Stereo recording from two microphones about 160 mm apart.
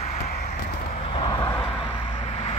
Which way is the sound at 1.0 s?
35° left (ahead or behind).